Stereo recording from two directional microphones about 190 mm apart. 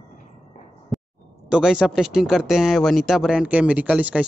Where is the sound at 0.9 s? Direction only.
Centre (ahead or behind).